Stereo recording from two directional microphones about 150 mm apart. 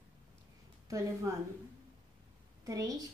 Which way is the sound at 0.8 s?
20° right (ahead or behind).